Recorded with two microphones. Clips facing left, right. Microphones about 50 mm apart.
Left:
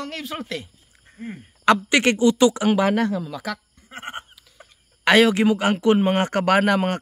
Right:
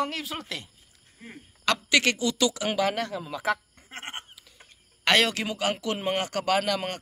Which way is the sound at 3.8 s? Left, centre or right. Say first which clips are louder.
Left 1 dB; right.